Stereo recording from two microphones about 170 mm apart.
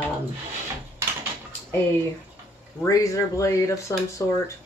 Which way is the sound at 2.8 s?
20° left (ahead or behind).